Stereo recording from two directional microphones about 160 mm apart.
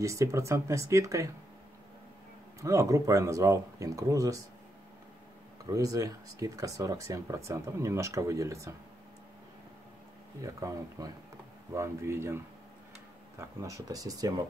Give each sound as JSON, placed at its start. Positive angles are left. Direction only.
{"t": 0.0, "sound": "speech", "side_deg": -20}
{"t": 2.6, "sound": "speech", "side_deg": -20}
{"t": 5.7, "sound": "speech", "side_deg": -20}
{"t": 10.4, "sound": "speech", "side_deg": -20}
{"t": 13.4, "sound": "speech", "side_deg": -20}